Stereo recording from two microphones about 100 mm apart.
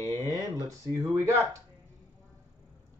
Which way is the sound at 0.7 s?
30° right (ahead or behind).